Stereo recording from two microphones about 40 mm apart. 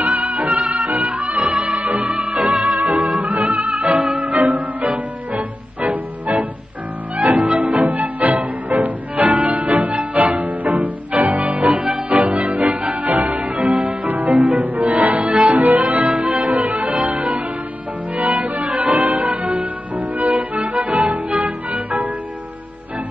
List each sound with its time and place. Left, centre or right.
0.0 s music: right
5.8 s music: right
18.1 s music: right